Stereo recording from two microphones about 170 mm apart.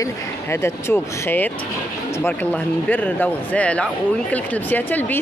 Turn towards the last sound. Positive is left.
turn(degrees=10)  # may be behind; listen again after turning